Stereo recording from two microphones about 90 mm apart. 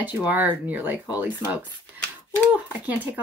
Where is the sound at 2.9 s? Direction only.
20° right (ahead or behind).